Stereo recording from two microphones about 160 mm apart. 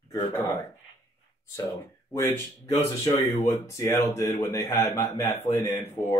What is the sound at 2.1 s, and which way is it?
Speech, 15° left (ahead or behind).